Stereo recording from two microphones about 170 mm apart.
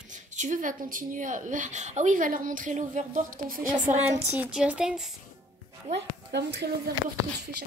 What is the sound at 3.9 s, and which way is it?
Speech, 40° right (ahead or behind).